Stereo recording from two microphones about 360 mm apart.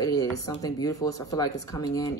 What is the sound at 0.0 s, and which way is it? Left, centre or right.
Speech, centre.